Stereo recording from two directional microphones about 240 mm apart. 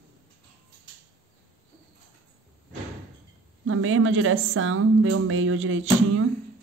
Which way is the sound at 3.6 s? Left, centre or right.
Right.